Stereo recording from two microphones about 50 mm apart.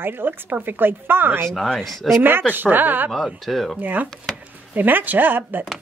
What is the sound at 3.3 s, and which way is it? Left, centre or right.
Speech, centre.